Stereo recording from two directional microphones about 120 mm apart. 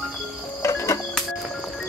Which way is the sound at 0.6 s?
25° left (ahead or behind).